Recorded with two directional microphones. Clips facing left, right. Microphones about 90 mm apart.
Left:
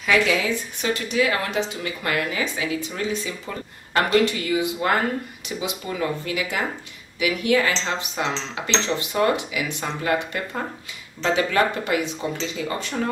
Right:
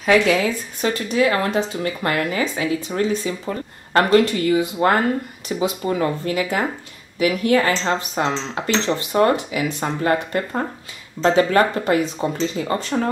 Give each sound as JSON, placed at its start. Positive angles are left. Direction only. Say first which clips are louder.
{"t": 0.0, "sound": "a woman's voice", "louder": "right 4 dB", "side_deg": -40}